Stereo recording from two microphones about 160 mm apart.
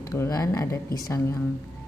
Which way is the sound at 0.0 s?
20° left (ahead or behind).